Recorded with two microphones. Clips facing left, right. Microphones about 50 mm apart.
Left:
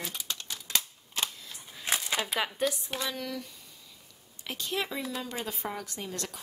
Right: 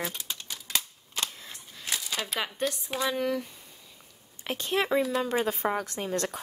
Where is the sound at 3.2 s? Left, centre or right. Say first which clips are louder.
Right 8 dB; right.